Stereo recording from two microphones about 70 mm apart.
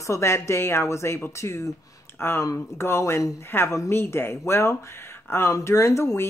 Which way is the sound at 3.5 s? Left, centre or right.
Left.